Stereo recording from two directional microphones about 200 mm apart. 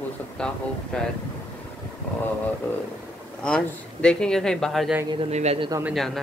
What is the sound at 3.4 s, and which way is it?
Speech, 5° left (ahead or behind).